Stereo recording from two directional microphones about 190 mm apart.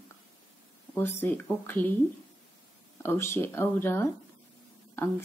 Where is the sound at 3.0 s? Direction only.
15° left (ahead or behind).